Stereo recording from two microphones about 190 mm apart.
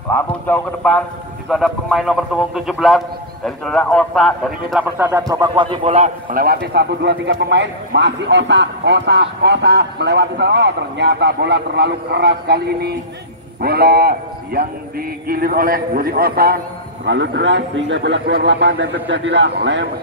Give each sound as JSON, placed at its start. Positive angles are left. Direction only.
{"t": 0.1, "sound": "a man's voice", "side_deg": 10}
{"t": 4.9, "sound": "speech", "side_deg": -10}
{"t": 5.3, "sound": "a man's voice", "side_deg": -20}
{"t": 6.4, "sound": "a man's voice", "side_deg": -55}
{"t": 13.6, "sound": "a sound", "side_deg": -55}
{"t": 17.0, "sound": "a man's voice", "side_deg": -70}